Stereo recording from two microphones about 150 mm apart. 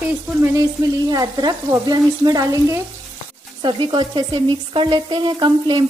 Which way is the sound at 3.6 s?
30° right (ahead or behind).